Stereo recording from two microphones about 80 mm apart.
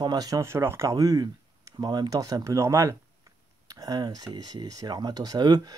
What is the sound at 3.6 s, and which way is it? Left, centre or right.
Speech, right.